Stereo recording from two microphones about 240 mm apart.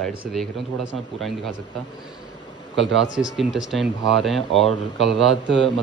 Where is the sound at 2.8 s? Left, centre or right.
Right.